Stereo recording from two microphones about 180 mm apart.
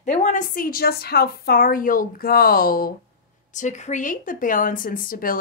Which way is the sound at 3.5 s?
40° left (ahead or behind).